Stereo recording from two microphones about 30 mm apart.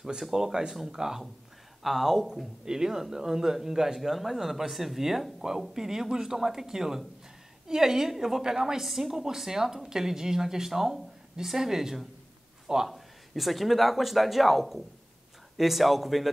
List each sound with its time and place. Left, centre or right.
0.2 s speech: centre
1.8 s speech: centre
12.8 s speech: centre